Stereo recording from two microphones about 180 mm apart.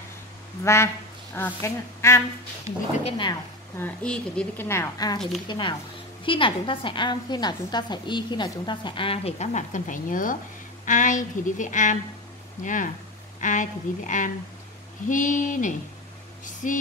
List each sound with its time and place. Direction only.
1.3 s speech: 15° left (ahead or behind)
3.0 s a woman's voice: 30° left (ahead or behind)
3.8 s a woman's voice: 5° left (ahead or behind); by 16.8 s 45° left (ahead or behind)